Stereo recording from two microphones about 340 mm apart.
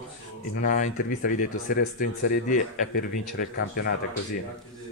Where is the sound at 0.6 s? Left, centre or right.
Left.